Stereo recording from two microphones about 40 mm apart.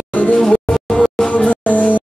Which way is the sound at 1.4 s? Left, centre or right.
Left.